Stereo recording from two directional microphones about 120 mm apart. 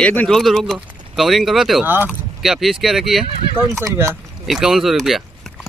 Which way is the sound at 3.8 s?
25° right (ahead or behind).